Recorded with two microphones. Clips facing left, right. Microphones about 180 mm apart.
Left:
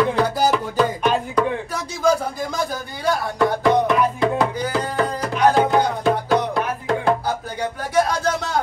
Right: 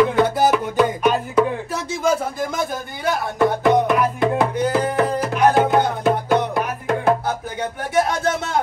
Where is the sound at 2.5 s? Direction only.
20° right (ahead or behind).